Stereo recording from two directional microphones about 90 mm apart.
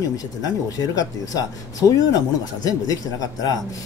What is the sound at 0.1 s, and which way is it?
Speech, 45° left (ahead or behind).